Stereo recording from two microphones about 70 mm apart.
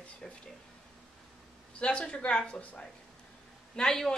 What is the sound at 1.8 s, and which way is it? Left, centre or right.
Speech, centre.